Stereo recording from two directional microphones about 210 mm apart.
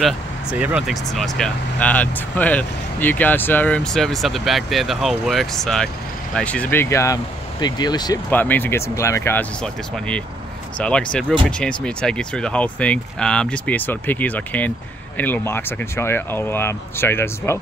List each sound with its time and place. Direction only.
0.0 s speech: 5° right (ahead or behind); by 8.2 s 20° left (ahead or behind)
8.3 s speech: 10° left (ahead or behind)